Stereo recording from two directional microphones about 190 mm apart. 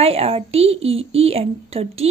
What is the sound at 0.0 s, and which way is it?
A woman's voice, 30° right (ahead or behind).